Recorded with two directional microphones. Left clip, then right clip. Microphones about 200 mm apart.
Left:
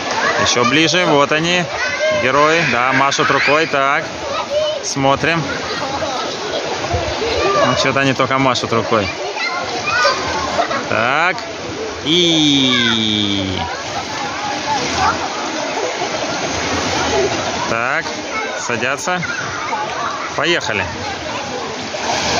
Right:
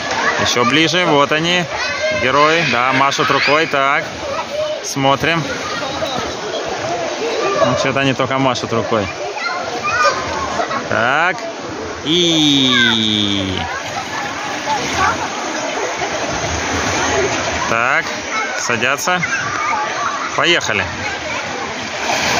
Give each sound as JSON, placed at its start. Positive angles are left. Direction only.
{"t": 0.5, "sound": "speech", "side_deg": -5}
{"t": 5.0, "sound": "speech", "side_deg": 0}
{"t": 7.7, "sound": "speech", "side_deg": -5}
{"t": 10.9, "sound": "speech", "side_deg": -5}
{"t": 17.6, "sound": "speech", "side_deg": -5}
{"t": 20.3, "sound": "speech", "side_deg": 0}